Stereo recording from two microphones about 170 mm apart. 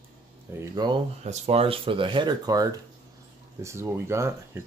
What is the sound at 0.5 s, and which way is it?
Speech, 25° right (ahead or behind).